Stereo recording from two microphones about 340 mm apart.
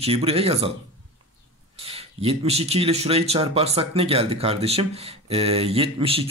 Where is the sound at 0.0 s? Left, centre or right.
Centre.